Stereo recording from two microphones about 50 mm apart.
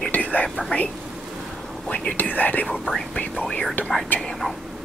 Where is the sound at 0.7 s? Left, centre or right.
Left.